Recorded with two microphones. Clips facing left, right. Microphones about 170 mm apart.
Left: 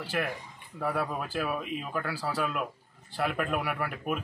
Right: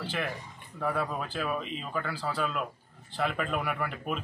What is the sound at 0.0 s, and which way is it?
A man's voice, 5° left (ahead or behind).